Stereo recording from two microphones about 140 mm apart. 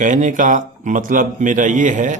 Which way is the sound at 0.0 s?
65° right (ahead or behind).